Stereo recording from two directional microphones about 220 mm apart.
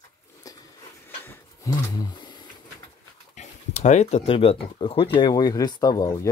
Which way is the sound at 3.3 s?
30° left (ahead or behind).